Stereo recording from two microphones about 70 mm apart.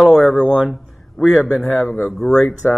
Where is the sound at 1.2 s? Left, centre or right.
Centre.